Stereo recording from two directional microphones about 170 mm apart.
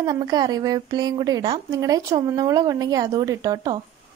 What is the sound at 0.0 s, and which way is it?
Speech, 20° right (ahead or behind).